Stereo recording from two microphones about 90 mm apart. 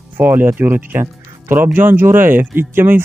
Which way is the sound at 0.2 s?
20° right (ahead or behind).